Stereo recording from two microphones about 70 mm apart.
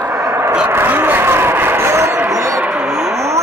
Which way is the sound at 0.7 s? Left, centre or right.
Right.